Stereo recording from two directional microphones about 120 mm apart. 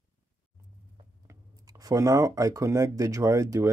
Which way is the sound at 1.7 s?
30° right (ahead or behind).